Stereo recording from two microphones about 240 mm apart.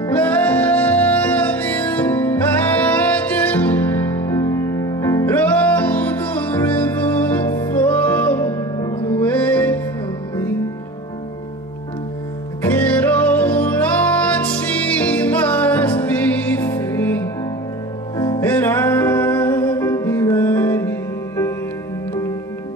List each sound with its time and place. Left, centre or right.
0.0 s music: centre
8.7 s music: left
9.2 s music: centre
12.8 s music: centre
18.1 s music: centre
18.4 s music: centre